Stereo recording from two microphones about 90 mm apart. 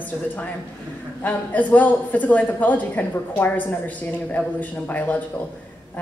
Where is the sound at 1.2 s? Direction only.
20° left (ahead or behind).